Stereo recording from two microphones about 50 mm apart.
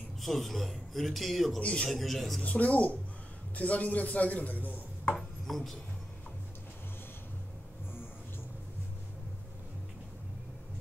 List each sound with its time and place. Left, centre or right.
0.2 s a man's voice: centre
1.6 s speech: left
1.9 s a man's voice: centre
2.4 s speech: left
5.1 s chopping: centre